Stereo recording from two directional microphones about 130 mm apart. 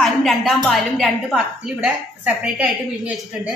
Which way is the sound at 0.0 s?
Centre (ahead or behind).